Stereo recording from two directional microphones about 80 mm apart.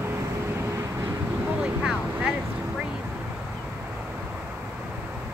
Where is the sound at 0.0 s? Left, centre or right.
Right.